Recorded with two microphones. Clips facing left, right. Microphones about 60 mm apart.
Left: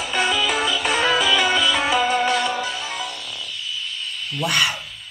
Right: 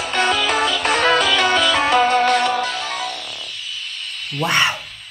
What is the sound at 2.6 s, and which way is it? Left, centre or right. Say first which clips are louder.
Music: right 4 dB; right.